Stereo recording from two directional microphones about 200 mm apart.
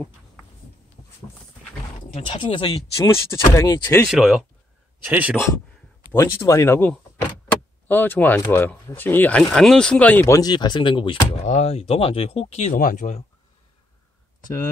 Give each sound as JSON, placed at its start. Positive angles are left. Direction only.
{"t": 2.0, "sound": "speech", "side_deg": 25}
{"t": 3.1, "sound": "speech", "side_deg": 15}
{"t": 4.1, "sound": "speech", "side_deg": -5}
{"t": 6.1, "sound": "speech", "side_deg": 15}
{"t": 7.5, "sound": "vehicle", "side_deg": 5}
{"t": 7.9, "sound": "speech", "side_deg": 10}